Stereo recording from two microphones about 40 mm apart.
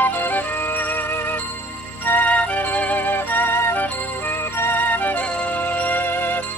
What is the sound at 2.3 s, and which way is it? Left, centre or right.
Music, left.